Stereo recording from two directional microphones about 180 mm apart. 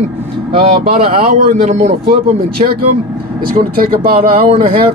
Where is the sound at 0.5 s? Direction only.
35° right (ahead or behind).